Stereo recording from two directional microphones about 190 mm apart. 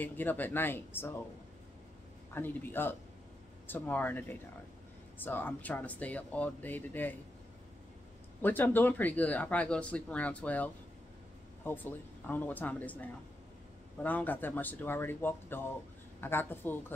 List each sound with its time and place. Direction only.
0.0 s speech: 10° left (ahead or behind)
2.3 s speech: 10° left (ahead or behind)
8.4 s speech: 10° left (ahead or behind)